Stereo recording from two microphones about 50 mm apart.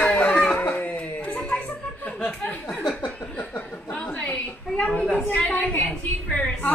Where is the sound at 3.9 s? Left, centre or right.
Centre.